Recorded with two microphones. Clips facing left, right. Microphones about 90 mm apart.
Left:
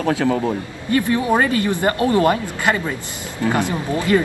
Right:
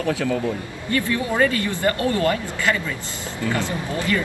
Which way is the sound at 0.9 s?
20° left (ahead or behind).